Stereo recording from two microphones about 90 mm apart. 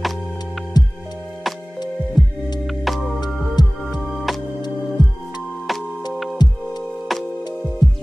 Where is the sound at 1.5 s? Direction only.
Centre (ahead or behind).